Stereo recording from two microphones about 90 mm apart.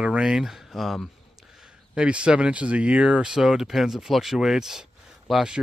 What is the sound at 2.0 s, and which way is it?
Speech, 10° right (ahead or behind).